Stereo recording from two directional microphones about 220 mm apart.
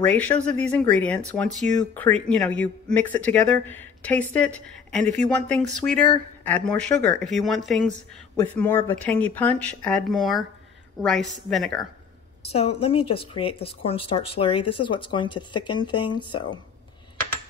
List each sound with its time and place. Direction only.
0.0 s speech: 5° left (ahead or behind)
12.4 s a woman's voice: 25° left (ahead or behind)